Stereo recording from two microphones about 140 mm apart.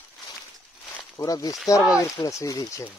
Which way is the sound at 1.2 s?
25° left (ahead or behind).